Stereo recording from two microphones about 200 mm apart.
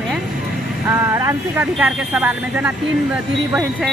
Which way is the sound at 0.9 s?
15° right (ahead or behind).